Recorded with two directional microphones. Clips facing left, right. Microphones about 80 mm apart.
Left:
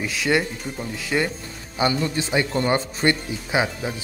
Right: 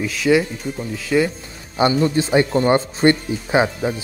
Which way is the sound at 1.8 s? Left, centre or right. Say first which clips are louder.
Right 6 dB; right.